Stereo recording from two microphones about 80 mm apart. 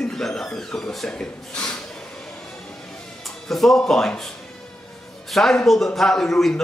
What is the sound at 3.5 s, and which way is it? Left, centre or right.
Speech, centre.